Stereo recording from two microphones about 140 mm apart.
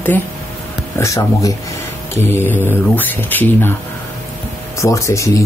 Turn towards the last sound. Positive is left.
turn(degrees=20)  # may be behind; listen again after turning